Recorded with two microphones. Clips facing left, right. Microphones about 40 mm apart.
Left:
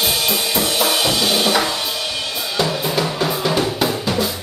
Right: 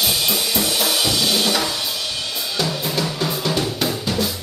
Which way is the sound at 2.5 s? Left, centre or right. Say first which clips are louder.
Left 4 dB; centre.